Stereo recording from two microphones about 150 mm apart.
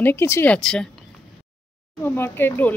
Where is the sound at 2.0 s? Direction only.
15° left (ahead or behind).